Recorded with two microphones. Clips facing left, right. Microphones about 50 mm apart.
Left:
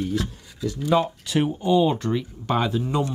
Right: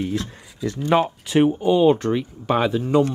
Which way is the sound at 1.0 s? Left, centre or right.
Right.